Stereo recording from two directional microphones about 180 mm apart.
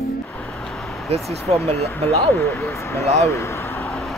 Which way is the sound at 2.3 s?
15° left (ahead or behind).